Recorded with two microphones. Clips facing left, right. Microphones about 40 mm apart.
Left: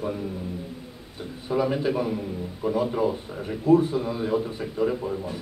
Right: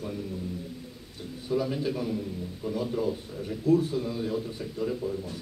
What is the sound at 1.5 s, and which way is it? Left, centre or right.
A man's voice, left.